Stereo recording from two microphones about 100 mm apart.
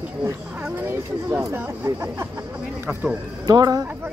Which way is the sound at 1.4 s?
30° right (ahead or behind).